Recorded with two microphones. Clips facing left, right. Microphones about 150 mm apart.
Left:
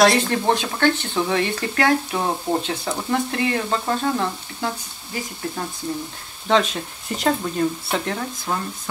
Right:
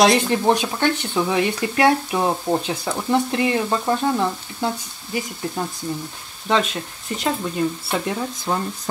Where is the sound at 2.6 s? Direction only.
15° right (ahead or behind).